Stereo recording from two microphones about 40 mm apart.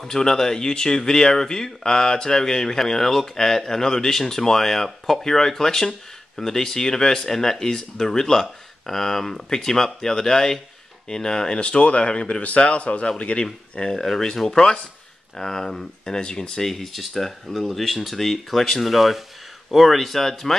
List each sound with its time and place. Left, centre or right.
0.0 s speech: centre
13.9 s speech: centre
16.8 s speech: centre